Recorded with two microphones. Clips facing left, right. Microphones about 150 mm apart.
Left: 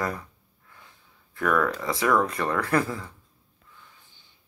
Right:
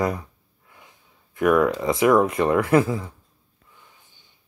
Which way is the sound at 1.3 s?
20° right (ahead or behind).